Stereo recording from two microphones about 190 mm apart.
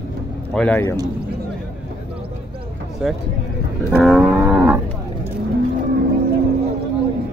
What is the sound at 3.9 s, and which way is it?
Vehicle, centre (ahead or behind).